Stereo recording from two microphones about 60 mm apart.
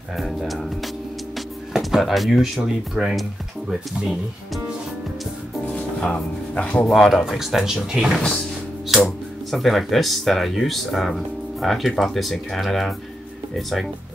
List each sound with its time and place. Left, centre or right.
0.2 s speech: centre
1.7 s speech: centre
5.8 s music: centre
6.9 s speech: centre